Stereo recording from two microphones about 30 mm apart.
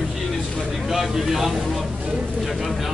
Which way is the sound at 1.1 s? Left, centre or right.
Centre.